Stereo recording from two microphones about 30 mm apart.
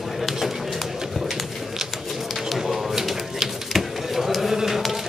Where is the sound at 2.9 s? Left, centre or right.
Centre.